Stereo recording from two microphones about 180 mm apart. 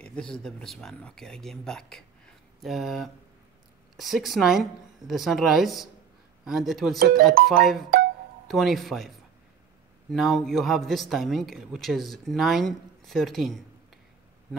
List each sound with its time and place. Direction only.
0.0 s speech: 5° left (ahead or behind)
7.0 s speech: 55° right (ahead or behind)
7.4 s speech: centre (ahead or behind)
10.1 s speech: centre (ahead or behind)